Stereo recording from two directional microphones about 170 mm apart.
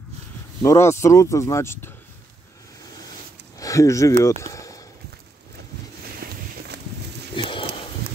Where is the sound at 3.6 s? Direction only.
20° left (ahead or behind).